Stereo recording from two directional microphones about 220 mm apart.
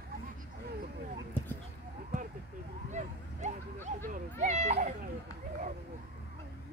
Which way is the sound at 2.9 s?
30° right (ahead or behind).